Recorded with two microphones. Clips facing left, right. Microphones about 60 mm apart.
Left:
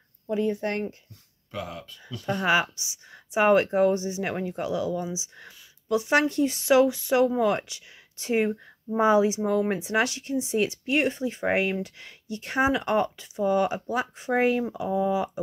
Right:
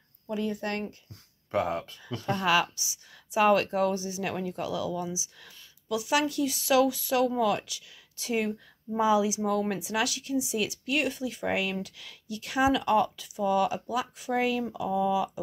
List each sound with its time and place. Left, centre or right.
0.3 s speech: left
1.5 s speech: right
2.3 s speech: left